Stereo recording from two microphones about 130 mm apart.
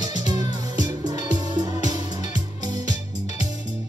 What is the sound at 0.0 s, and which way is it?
Music, 30° right (ahead or behind).